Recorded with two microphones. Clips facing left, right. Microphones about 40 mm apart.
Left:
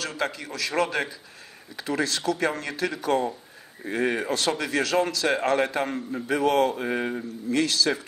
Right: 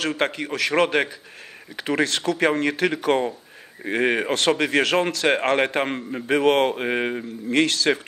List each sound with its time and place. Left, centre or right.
0.0 s speech: right